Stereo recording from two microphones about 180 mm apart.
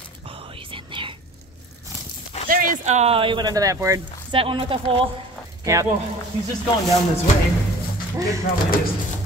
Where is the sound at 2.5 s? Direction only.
50° right (ahead or behind); by 4.0 s 20° right (ahead or behind).